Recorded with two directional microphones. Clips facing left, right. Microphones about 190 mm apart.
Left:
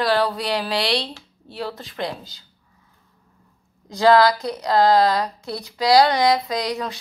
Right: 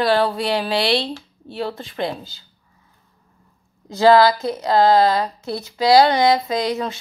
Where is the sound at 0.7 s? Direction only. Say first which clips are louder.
Right 4 dB; centre (ahead or behind).